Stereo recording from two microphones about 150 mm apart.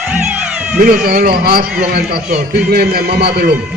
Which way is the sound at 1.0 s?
90° right.